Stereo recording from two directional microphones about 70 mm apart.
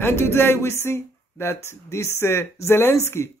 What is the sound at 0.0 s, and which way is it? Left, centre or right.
Speech, left.